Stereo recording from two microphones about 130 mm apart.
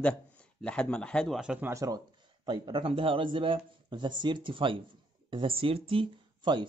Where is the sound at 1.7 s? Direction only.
25° right (ahead or behind).